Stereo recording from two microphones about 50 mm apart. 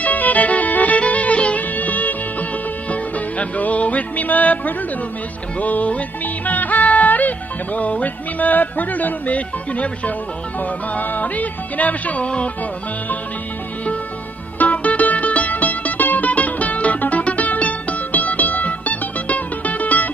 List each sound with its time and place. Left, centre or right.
0.0 s music: left
14.6 s music: left